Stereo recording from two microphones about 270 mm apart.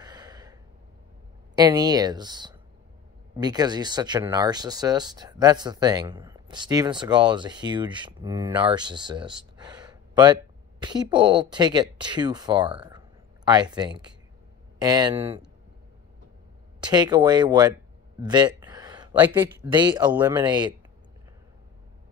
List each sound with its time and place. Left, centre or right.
0.0 s gasp: centre
1.5 s speech: centre
12.7 s speech: centre
16.9 s speech: centre
18.2 s a sound: centre
19.7 s speech: centre